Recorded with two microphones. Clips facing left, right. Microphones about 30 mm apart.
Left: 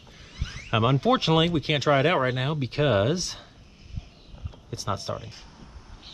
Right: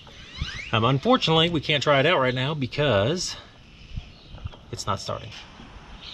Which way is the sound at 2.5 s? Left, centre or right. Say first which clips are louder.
Right 1 dB; right.